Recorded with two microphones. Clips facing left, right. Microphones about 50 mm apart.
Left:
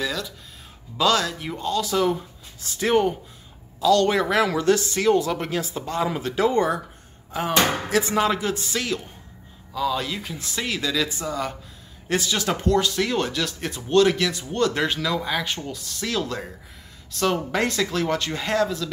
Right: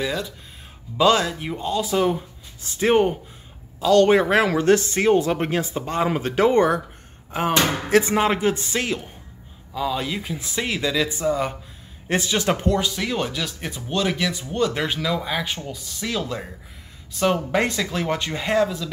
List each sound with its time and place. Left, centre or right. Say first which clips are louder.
0.0 s music: right 2 dB; right
0.9 s speech: right 3 dB; right
9.8 s speech: even; centre
12.8 s speech: left 1 dB; centre